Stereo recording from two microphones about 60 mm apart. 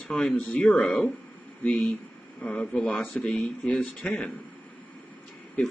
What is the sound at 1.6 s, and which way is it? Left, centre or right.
Speech, left.